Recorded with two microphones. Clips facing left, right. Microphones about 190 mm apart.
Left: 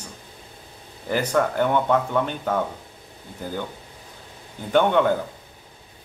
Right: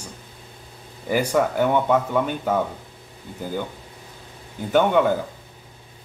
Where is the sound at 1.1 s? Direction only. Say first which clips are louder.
Right 1 dB; 10° right (ahead or behind).